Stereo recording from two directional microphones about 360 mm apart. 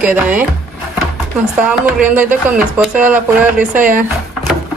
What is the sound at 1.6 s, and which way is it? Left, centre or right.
Speech, centre.